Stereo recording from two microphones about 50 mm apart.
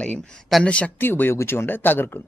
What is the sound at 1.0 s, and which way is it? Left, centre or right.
Speech, left.